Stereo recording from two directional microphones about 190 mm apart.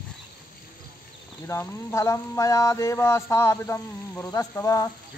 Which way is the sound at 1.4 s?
15° left (ahead or behind).